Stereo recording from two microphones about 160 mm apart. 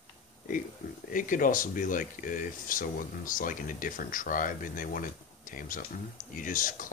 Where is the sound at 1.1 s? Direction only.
55° left (ahead or behind).